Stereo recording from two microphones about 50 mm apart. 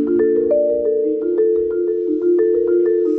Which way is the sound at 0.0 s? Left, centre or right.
Centre.